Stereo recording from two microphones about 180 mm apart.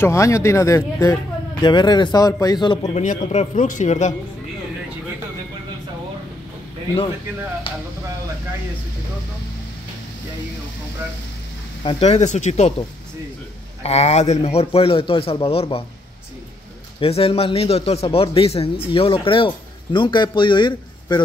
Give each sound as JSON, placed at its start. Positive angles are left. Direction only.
{"t": 0.0, "sound": "speech", "side_deg": 15}
{"t": 2.9, "sound": "a man's voice", "side_deg": 40}
{"t": 11.8, "sound": "a man's voice", "side_deg": 30}
{"t": 13.8, "sound": "a man's voice", "side_deg": 35}
{"t": 17.0, "sound": "a man's voice", "side_deg": 30}